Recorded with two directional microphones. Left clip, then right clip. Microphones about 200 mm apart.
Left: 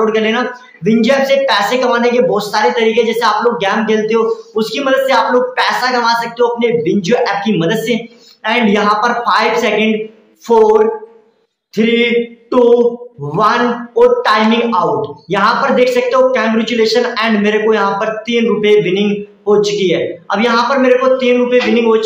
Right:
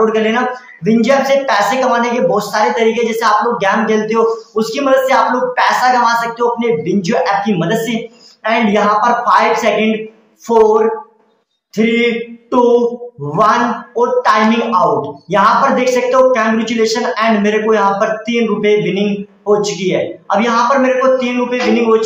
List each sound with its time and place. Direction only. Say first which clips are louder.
0.0 s speech: even; 10° left (ahead or behind)